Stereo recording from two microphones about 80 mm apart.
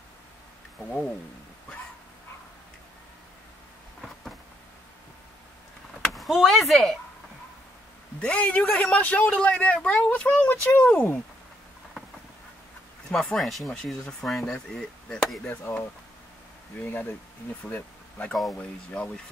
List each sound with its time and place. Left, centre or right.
6.1 s speech: centre
8.2 s speech: centre
13.1 s speech: centre
14.4 s speech: centre
16.7 s speech: left
18.3 s speech: centre